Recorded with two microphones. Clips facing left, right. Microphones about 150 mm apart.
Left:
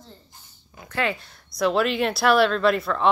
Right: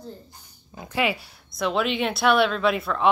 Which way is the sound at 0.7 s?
25° right (ahead or behind).